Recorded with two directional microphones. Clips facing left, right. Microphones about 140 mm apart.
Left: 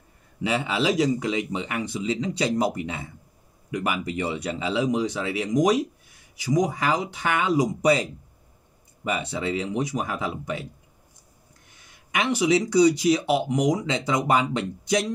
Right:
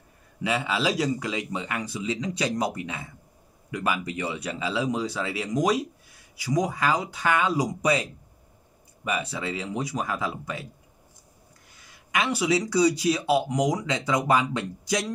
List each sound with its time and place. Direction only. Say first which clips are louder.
0.4 s speech: left 2 dB; 25° left (ahead or behind)
11.7 s speech: even; 25° left (ahead or behind)